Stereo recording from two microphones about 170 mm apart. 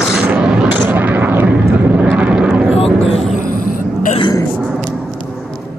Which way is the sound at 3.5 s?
55° left (ahead or behind).